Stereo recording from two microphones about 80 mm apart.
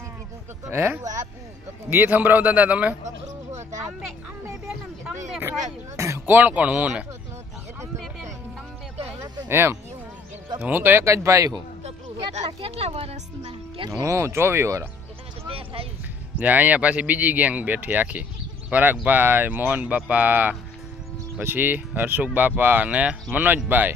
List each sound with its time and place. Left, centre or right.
0.7 s speech: right
5.4 s speech: right; by 7.1 s centre
9.5 s speech: right
13.8 s speech: right
16.3 s speech: centre